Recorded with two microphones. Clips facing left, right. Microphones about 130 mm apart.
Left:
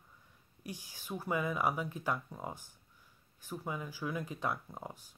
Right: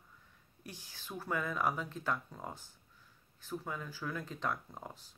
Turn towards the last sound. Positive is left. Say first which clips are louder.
# left 1 dB
turn(degrees=10)  # may be behind; listen again after turning